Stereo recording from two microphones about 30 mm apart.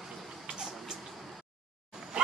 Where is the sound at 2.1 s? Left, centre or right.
Right.